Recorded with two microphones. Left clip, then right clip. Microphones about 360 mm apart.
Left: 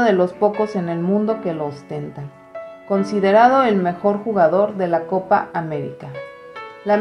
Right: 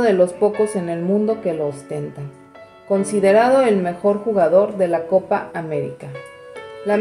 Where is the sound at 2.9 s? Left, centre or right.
Left.